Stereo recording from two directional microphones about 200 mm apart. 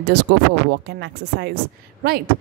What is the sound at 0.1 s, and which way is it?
Speech, 60° right (ahead or behind).